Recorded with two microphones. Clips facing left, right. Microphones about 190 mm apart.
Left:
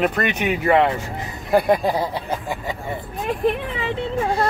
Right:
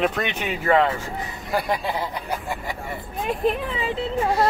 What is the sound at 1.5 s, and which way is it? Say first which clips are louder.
Speech: left 8 dB; 55° left (ahead or behind).